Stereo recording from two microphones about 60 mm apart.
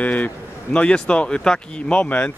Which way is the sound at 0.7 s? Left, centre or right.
Centre.